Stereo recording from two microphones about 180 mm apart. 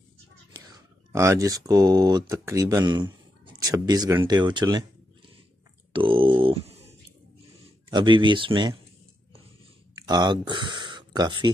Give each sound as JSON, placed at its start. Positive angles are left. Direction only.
{"t": 1.1, "sound": "speech", "side_deg": -15}
{"t": 5.9, "sound": "a sound", "side_deg": -30}
{"t": 7.9, "sound": "speech", "side_deg": -25}
{"t": 10.0, "sound": "speech", "side_deg": -25}